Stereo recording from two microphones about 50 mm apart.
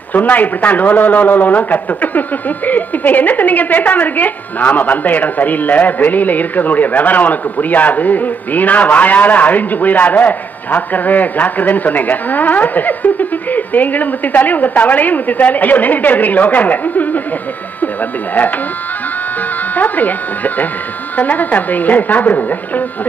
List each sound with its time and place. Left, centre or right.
0.1 s a man's voice: left
19.7 s a man's voice: left